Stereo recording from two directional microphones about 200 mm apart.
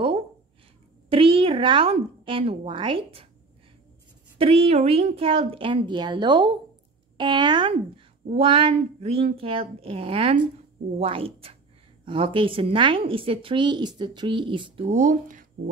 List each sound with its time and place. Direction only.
1.1 s speech: 25° right (ahead or behind)
4.4 s speech: 30° right (ahead or behind)